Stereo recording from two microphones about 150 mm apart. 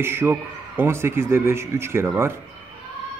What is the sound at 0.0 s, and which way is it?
Speech, 15° right (ahead or behind).